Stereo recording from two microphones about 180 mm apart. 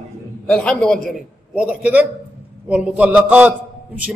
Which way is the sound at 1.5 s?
5° right (ahead or behind).